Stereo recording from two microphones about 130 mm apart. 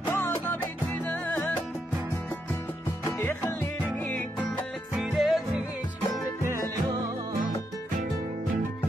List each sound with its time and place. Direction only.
0.0 s music: 15° left (ahead or behind)
3.2 s music: 15° left (ahead or behind)
4.9 s music: centre (ahead or behind)
6.4 s music: 20° right (ahead or behind)